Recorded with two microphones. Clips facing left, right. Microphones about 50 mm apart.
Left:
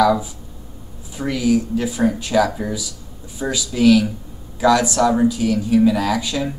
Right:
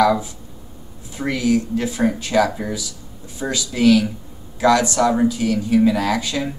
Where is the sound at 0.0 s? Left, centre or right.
Centre.